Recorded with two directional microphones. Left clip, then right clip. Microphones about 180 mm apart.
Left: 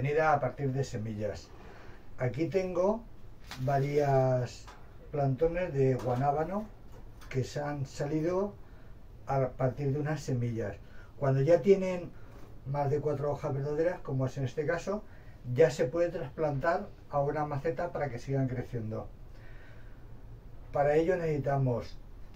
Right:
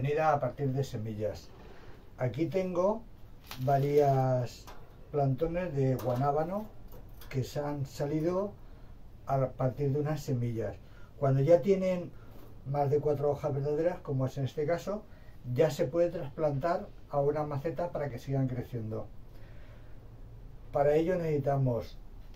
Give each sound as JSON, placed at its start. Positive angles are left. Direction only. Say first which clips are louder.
{"t": 0.0, "sound": "speech", "louder": "left 1 dB", "side_deg": -15}
{"t": 20.7, "sound": "speech", "louder": "even", "side_deg": -15}